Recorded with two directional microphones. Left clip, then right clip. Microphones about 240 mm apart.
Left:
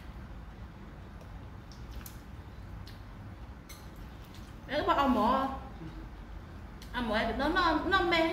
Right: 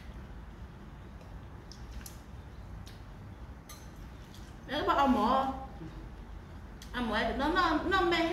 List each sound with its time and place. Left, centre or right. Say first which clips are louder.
4.6 s a woman's voice: even; centre
6.9 s a woman's voice: left 1 dB; centre